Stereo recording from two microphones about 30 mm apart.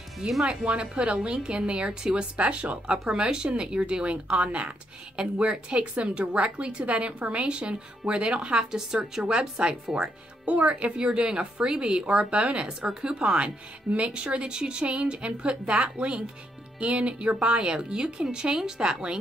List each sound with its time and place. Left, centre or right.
0.2 s speech: right
3.1 s a woman's voice: right
6.9 s speech: right
8.7 s a woman's voice: centre
9.6 s speech: right
9.9 s speech: right